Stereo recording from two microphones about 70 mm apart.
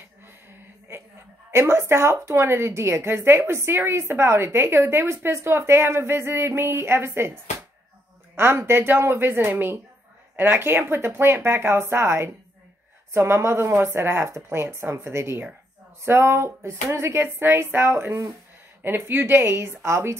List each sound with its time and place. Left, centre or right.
1.5 s a woman's voice: right
8.4 s a woman's voice: right